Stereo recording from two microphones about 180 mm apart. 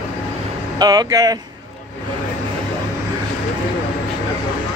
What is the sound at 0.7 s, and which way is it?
Speech, 20° right (ahead or behind).